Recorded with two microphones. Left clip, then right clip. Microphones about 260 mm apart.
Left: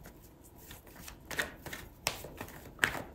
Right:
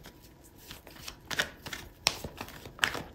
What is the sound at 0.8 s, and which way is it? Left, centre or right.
Shuffling cards, centre.